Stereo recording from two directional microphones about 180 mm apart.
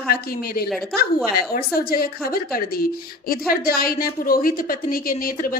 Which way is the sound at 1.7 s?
55° left (ahead or behind).